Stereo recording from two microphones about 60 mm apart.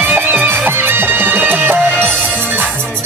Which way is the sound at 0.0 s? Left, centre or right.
Right.